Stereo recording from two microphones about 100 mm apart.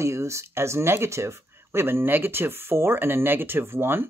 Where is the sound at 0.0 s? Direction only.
30° right (ahead or behind).